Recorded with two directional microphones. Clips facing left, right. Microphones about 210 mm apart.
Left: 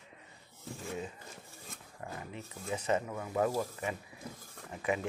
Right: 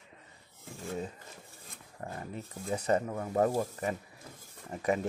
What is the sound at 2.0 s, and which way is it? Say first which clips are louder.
Speech: right 3 dB; 40° right (ahead or behind).